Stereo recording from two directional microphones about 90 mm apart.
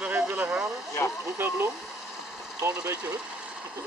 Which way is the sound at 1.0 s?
30° left (ahead or behind).